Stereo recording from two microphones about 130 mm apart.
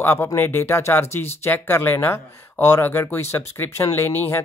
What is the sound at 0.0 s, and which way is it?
Speech, 20° left (ahead or behind).